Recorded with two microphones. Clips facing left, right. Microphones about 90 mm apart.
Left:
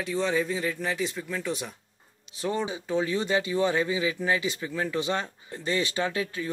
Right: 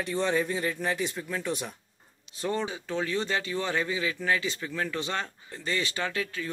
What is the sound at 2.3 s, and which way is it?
Speech, 10° left (ahead or behind).